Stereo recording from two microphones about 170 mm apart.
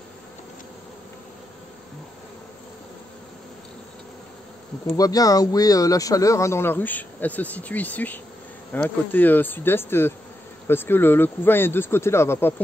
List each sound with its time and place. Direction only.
4.8 s speech: 20° left (ahead or behind)